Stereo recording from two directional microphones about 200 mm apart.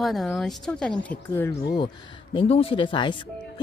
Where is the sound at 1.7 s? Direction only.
25° left (ahead or behind).